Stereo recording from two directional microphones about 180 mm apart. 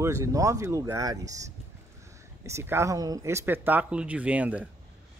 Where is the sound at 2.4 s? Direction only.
15° right (ahead or behind).